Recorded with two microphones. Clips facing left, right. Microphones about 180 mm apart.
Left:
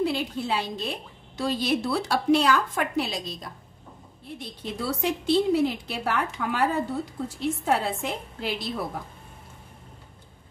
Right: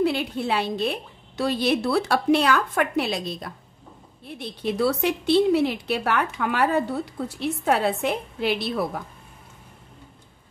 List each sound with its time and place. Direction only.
0.0 s a woman's voice: 65° right (ahead or behind)